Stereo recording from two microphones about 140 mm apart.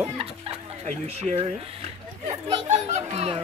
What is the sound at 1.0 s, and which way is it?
Speech, 45° right (ahead or behind).